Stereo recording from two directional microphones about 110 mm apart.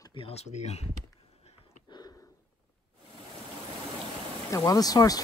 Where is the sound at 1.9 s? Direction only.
40° left (ahead or behind).